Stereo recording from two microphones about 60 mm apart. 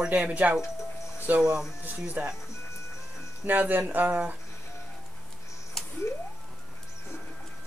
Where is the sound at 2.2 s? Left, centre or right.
Right.